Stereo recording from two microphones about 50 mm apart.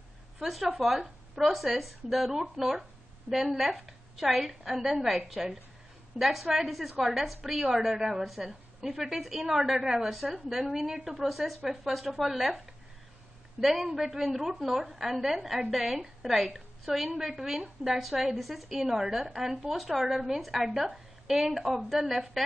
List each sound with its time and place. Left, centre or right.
0.4 s a woman's voice: centre